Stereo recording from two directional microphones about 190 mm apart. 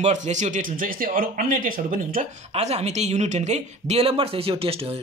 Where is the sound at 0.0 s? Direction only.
40° right (ahead or behind).